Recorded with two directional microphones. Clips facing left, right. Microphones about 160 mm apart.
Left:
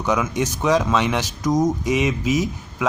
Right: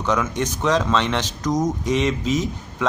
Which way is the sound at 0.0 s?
10° left (ahead or behind).